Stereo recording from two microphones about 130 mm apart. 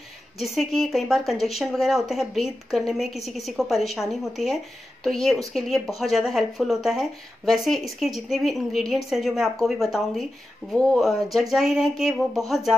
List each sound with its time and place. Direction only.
0.4 s speech: centre (ahead or behind)